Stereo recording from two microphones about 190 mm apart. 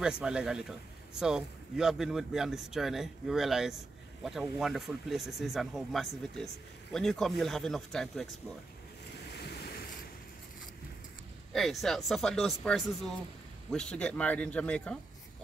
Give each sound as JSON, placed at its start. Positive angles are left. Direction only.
{"t": 0.0, "sound": "speech", "side_deg": -5}
{"t": 9.4, "sound": "waves", "side_deg": 55}
{"t": 11.5, "sound": "speech", "side_deg": 0}